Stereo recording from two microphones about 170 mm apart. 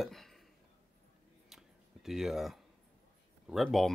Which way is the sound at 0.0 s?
Centre (ahead or behind).